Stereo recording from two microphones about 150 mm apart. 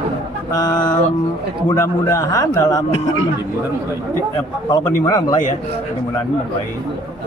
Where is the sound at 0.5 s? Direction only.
25° left (ahead or behind).